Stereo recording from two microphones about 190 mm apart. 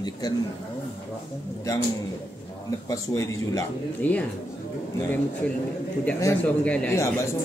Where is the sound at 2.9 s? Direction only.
15° left (ahead or behind).